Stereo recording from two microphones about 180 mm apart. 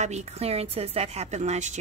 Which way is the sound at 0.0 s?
40° right (ahead or behind).